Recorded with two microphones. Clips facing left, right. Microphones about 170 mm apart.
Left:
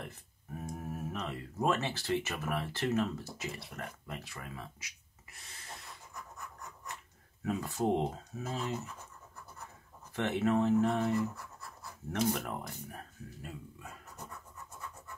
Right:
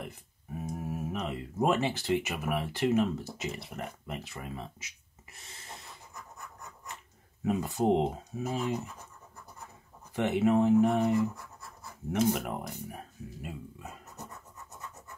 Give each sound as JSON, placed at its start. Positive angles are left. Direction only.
{"t": 0.6, "sound": "speech", "side_deg": -5}
{"t": 7.4, "sound": "speech", "side_deg": -20}
{"t": 10.1, "sound": "speech", "side_deg": -15}